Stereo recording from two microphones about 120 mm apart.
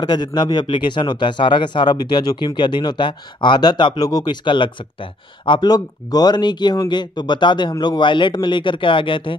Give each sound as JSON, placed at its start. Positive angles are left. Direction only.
{"t": 0.0, "sound": "speech", "side_deg": 35}